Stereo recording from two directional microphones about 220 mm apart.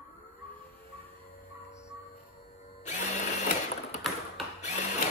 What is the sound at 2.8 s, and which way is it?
Drill, 30° left (ahead or behind).